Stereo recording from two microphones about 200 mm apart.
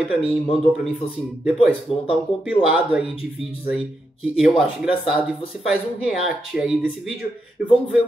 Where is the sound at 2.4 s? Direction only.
5° right (ahead or behind).